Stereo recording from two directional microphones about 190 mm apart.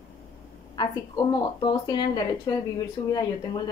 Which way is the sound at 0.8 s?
20° left (ahead or behind).